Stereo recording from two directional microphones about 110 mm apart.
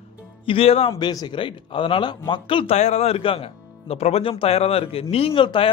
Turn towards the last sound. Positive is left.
turn(degrees=50)  # may be behind; listen again after turning